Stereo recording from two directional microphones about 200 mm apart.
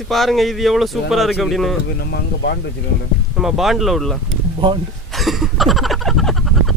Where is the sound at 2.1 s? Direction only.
55° left (ahead or behind).